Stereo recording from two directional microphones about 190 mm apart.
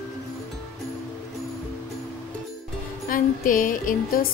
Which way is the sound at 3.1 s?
45° left (ahead or behind).